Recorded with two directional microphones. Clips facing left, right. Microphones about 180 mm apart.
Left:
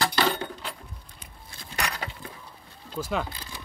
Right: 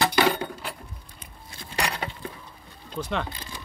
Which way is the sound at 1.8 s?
30° right (ahead or behind).